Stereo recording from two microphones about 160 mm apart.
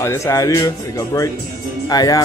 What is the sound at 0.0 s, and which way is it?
Speech, 20° left (ahead or behind).